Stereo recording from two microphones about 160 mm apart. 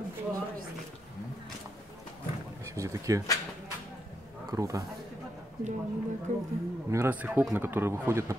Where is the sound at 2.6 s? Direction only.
20° right (ahead or behind).